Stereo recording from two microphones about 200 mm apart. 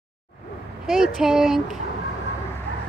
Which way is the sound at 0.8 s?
5° right (ahead or behind).